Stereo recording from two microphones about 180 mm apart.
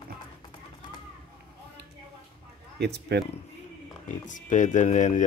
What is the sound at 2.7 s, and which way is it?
Speech, 65° right (ahead or behind).